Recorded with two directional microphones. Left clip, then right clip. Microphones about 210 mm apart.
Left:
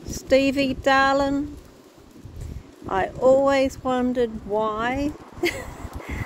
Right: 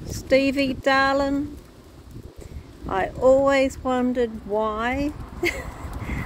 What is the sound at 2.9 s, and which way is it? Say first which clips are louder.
Speech: even; 5° right (ahead or behind).